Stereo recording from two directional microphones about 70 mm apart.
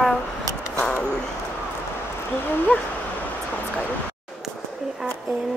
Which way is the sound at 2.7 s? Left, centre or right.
Left.